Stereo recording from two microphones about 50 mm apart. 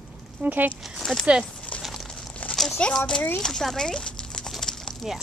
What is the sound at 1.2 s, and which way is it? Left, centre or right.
Speech, centre.